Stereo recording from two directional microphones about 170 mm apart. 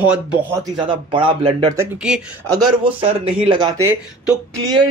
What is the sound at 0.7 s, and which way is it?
Speech, 30° right (ahead or behind).